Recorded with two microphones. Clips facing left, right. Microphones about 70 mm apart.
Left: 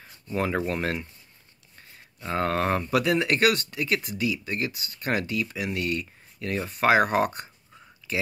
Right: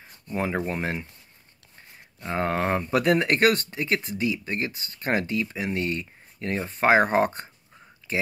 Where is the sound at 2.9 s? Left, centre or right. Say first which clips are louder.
Right 3 dB; right.